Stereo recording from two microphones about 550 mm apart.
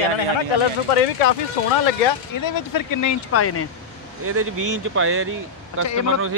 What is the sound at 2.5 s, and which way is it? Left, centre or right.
Speech, left.